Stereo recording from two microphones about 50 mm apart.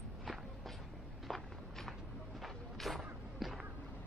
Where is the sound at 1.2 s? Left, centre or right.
Centre.